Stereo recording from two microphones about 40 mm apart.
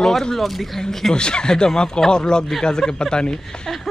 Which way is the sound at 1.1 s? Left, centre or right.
Left.